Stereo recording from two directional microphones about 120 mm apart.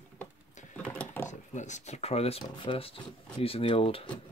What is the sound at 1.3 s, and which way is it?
Speech, 90° left.